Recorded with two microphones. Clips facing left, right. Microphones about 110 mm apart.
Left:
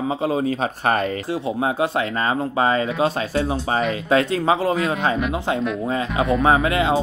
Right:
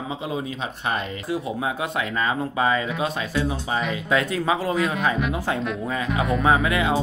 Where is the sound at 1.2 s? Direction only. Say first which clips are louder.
Left 3 dB; 30° left (ahead or behind).